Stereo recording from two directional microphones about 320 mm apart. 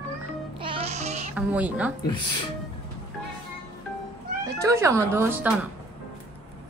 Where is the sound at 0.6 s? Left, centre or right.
Centre.